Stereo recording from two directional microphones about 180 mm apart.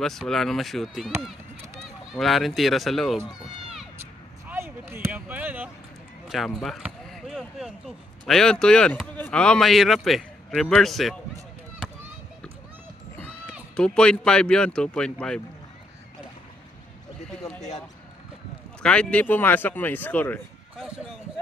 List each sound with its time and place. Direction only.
0.0 s speech: centre (ahead or behind)
4.5 s a sound: 10° right (ahead or behind)
6.2 s basketball bounce: centre (ahead or behind)
8.3 s speech: 5° left (ahead or behind)
13.7 s speech: 5° left (ahead or behind)
18.8 s speech: 5° left (ahead or behind)
20.7 s speech: 5° right (ahead or behind)